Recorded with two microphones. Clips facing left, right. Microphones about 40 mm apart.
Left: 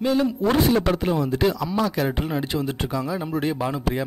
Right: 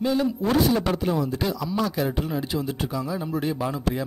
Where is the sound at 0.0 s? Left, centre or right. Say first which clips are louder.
Left 2 dB; left.